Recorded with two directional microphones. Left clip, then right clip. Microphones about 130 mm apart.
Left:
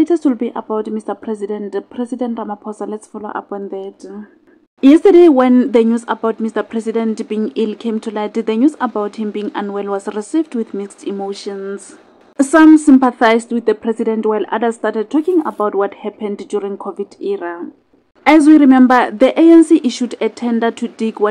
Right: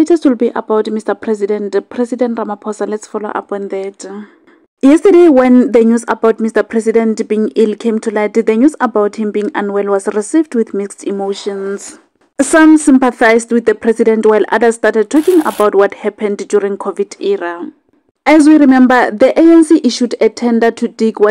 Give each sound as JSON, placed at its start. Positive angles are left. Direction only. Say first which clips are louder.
{"t": 0.0, "sound": "speech", "louder": "right 4 dB", "side_deg": -30}
{"t": 12.4, "sound": "speech", "louder": "right 1 dB", "side_deg": -35}